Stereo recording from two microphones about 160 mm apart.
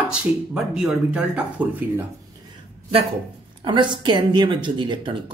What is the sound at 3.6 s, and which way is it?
Speech, 30° right (ahead or behind).